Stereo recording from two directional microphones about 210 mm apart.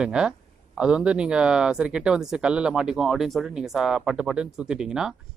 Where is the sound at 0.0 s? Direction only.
5° right (ahead or behind).